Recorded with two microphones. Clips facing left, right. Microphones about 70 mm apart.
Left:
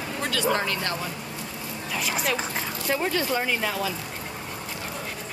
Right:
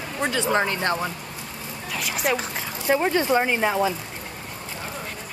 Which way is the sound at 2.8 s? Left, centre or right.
Right.